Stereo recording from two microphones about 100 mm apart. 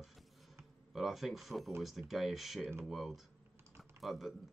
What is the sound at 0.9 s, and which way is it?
Speech, centre (ahead or behind).